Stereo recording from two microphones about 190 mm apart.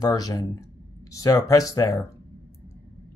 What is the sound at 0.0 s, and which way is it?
Speech, 20° left (ahead or behind).